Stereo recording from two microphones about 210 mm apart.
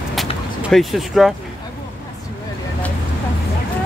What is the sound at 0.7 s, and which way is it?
Speech, centre (ahead or behind).